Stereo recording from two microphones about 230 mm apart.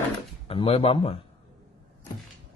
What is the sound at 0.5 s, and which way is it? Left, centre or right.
Speech, left.